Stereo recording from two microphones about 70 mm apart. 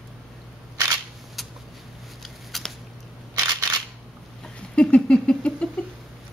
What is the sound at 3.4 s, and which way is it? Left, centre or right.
Single-lens reflex camera, right.